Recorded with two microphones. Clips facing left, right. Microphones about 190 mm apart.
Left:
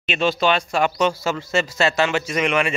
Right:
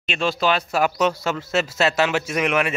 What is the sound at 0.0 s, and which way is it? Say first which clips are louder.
Speech: left 2 dB; centre (ahead or behind).